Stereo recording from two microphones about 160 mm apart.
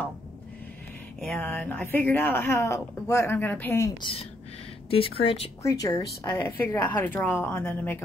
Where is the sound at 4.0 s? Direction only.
35° left (ahead or behind).